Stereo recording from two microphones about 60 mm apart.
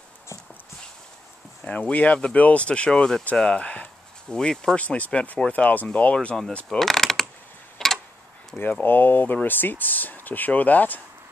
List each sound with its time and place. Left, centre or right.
1.7 s speech: left
4.8 s speech: left
6.8 s speech: centre
7.8 s tick-tock: centre
8.8 s speech: left